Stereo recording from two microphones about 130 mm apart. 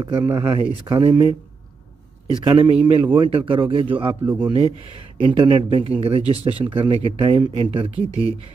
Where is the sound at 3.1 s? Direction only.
40° right (ahead or behind).